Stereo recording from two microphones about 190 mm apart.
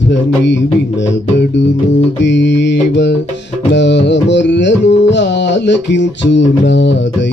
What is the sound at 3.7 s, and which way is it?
Music, 70° left (ahead or behind).